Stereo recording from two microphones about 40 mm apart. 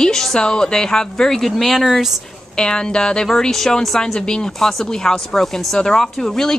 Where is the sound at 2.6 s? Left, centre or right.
Left.